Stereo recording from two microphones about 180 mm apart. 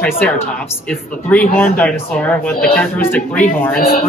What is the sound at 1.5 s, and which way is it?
Speech, 10° left (ahead or behind).